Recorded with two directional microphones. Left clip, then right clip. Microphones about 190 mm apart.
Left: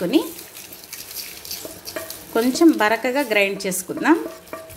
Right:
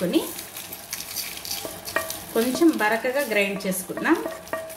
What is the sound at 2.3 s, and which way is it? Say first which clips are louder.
A woman's voice: left 4 dB; 35° left (ahead or behind).